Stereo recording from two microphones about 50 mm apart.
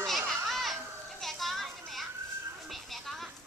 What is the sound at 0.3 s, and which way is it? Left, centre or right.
Children playing, centre.